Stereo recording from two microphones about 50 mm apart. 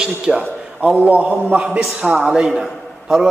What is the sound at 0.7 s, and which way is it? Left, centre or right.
A man's voice, right.